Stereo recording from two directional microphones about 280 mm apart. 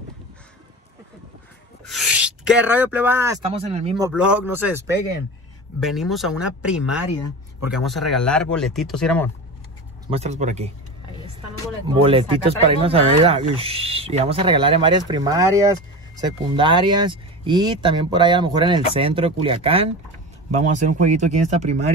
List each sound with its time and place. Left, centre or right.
1.9 s a sound: centre
3.5 s speech: right
4.1 s speech: centre
10.0 s speech: right
12.0 s speech: centre